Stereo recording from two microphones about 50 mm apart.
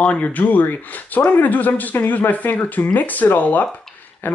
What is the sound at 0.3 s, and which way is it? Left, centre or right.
Speech, left.